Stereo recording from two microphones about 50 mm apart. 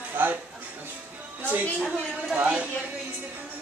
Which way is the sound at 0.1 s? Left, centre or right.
Right.